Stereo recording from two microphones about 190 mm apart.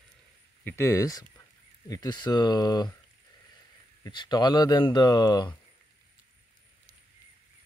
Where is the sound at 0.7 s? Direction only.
15° left (ahead or behind).